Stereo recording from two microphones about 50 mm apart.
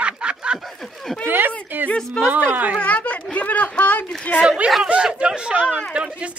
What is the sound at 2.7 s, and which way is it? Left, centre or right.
Speech, left.